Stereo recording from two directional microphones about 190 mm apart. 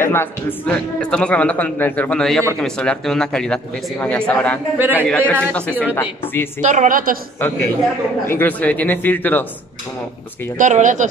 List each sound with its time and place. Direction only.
0.0 s a man's voice: 10° left (ahead or behind)
4.7 s a man's voice: 10° right (ahead or behind)
5.0 s a man's voice: 5° left (ahead or behind)
6.6 s a woman's voice: 40° right (ahead or behind)
8.3 s a man's voice: 10° left (ahead or behind)
10.6 s speech: 40° right (ahead or behind)